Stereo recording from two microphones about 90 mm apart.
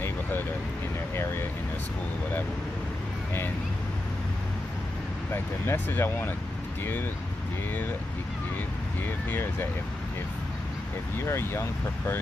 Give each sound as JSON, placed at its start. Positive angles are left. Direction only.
{"t": 0.0, "sound": "vehicle", "side_deg": 25}
{"t": 5.3, "sound": "speech", "side_deg": 25}
{"t": 9.0, "sound": "speech", "side_deg": 25}
{"t": 11.1, "sound": "speech", "side_deg": 30}